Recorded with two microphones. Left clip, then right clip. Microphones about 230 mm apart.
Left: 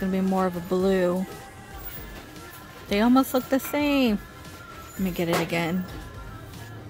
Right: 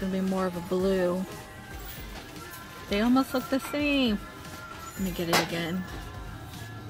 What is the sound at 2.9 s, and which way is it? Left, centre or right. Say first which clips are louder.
Speech: left 4 dB; centre.